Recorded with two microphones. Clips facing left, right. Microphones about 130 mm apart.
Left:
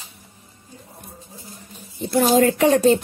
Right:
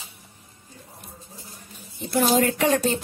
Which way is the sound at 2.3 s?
30° left (ahead or behind).